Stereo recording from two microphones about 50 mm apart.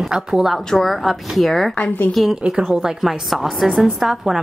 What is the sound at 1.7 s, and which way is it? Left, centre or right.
Speech, left.